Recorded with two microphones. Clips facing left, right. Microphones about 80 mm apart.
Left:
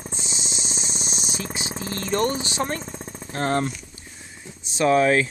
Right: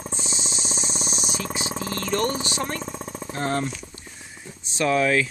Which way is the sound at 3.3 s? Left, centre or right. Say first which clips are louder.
Left 3 dB; left.